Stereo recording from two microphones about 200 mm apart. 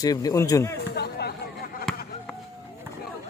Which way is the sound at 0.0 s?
20° left (ahead or behind).